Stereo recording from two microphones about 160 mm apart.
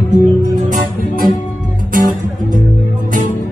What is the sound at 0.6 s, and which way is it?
Music, 60° right (ahead or behind).